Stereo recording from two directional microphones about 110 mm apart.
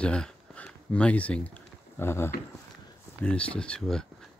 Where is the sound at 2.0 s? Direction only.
20° left (ahead or behind).